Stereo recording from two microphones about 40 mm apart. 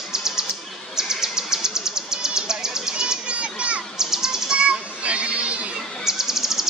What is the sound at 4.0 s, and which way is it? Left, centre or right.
Bird, centre.